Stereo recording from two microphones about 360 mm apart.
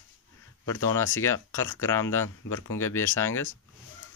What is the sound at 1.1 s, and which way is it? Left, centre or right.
Speech, centre.